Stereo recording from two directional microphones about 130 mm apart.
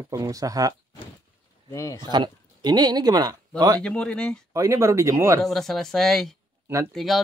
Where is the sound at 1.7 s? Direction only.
25° left (ahead or behind).